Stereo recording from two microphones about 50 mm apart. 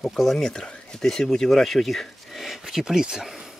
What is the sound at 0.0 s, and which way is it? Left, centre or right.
Speech, centre.